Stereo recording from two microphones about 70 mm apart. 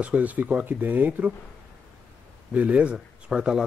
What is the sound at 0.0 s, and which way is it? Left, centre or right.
Speech, right.